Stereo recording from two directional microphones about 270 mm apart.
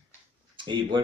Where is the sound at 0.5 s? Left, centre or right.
Centre.